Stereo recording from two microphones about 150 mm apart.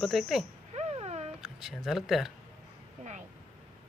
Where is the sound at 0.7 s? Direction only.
45° right (ahead or behind).